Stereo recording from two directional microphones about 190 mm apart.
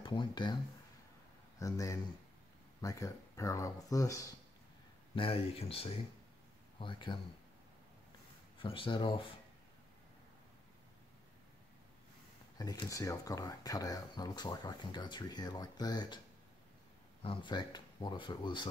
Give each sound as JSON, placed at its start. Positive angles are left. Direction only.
{"t": 0.0, "sound": "speech", "side_deg": 25}
{"t": 1.6, "sound": "speech", "side_deg": 15}
{"t": 5.1, "sound": "speech", "side_deg": 30}
{"t": 8.6, "sound": "speech", "side_deg": 25}
{"t": 12.5, "sound": "speech", "side_deg": 20}
{"t": 17.2, "sound": "speech", "side_deg": 25}